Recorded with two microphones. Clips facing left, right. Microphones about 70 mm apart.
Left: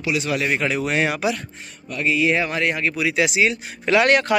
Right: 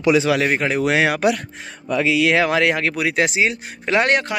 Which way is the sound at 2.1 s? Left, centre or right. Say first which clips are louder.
Right 2 dB; right.